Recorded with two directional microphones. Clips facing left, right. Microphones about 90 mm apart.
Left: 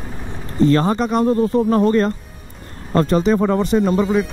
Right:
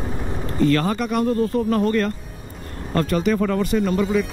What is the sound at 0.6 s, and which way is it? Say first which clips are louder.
Speech: left 4 dB; 25° left (ahead or behind).